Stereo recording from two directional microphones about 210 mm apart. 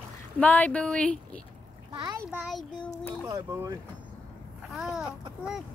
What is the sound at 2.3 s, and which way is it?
Speech, centre (ahead or behind).